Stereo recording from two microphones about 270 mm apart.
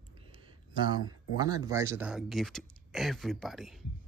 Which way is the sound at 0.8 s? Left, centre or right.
Centre.